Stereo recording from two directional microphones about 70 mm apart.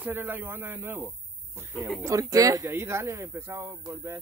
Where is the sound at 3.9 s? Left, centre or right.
Right.